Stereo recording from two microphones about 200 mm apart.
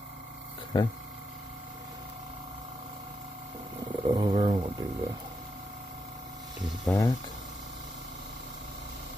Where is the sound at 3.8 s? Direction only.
20° right (ahead or behind).